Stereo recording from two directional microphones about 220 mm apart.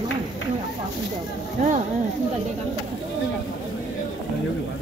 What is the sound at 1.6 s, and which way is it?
Speech, 30° right (ahead or behind).